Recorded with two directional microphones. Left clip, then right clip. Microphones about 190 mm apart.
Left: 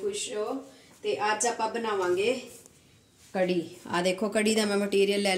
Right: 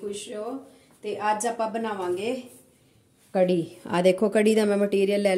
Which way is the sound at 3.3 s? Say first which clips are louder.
Right 5 dB; 60° right (ahead or behind).